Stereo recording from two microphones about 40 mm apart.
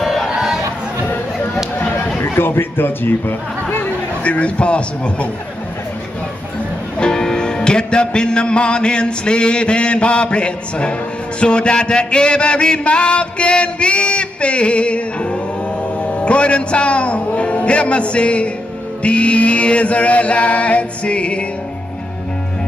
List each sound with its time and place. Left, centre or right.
0.0 s crowd: centre
2.3 s a man's voice: left
4.2 s chant: left
7.0 s music: centre
19.0 s chant: left